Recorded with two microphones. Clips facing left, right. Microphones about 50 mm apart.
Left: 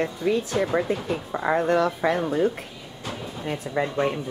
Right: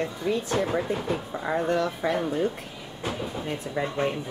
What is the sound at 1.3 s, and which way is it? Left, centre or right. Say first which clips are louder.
Speech: left 5 dB; left.